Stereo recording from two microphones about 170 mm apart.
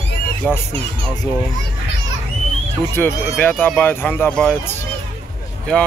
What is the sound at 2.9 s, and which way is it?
Speech, 10° left (ahead or behind).